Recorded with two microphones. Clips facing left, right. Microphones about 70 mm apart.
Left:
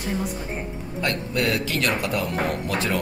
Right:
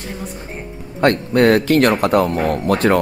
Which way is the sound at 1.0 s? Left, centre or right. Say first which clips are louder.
Right 12 dB; right.